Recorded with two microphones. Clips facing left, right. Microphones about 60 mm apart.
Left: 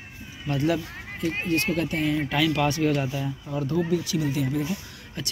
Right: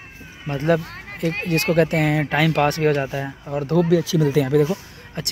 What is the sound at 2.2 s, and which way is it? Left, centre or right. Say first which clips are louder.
Speech: right 5 dB; right.